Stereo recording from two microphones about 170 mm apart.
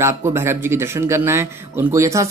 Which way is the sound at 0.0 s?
15° right (ahead or behind).